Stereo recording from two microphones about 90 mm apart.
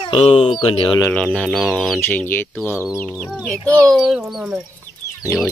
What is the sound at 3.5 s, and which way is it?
Speech, 10° left (ahead or behind).